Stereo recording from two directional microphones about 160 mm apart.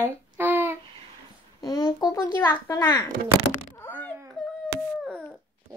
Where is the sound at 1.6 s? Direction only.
25° left (ahead or behind).